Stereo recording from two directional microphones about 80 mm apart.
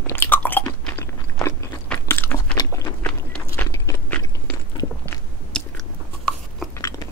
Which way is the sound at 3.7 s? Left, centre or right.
Left.